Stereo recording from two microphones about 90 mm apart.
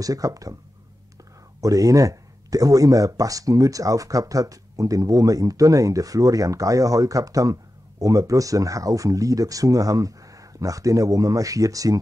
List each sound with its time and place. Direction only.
0.0 s speech: 40° right (ahead or behind)
1.6 s speech: 40° right (ahead or behind)